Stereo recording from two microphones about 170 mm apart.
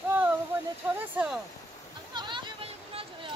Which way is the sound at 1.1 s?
5° right (ahead or behind).